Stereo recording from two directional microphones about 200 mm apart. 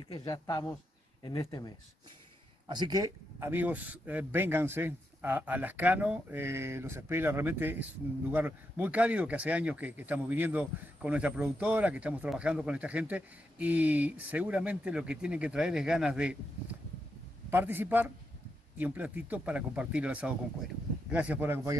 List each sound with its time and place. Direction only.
0.3 s speech: 15° left (ahead or behind)
2.7 s speech: 20° right (ahead or behind)
17.5 s speech: 10° right (ahead or behind)